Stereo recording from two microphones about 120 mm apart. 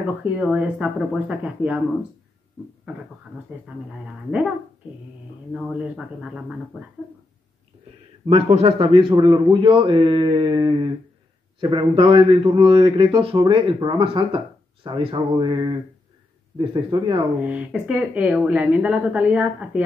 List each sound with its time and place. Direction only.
0.0 s a woman's voice: 10° right (ahead or behind)
3.5 s a woman's voice: 10° right (ahead or behind)
5.5 s a woman's voice: 5° right (ahead or behind)
8.3 s a man's voice: 60° right (ahead or behind); by 17.2 s 35° right (ahead or behind)
17.4 s a woman's voice: 10° right (ahead or behind)